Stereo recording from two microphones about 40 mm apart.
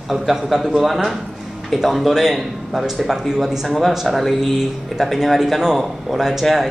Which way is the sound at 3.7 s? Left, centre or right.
Centre.